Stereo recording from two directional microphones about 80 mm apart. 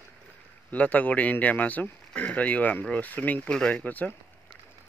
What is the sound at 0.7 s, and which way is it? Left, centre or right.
Speech, centre.